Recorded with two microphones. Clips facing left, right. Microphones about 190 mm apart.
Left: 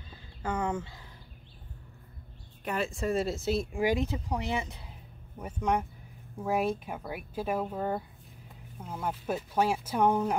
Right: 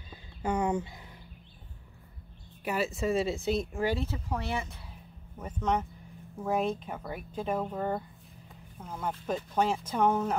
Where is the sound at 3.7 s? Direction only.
15° left (ahead or behind).